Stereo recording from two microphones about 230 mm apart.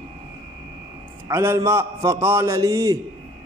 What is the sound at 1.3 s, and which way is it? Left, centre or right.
A man's voice, centre.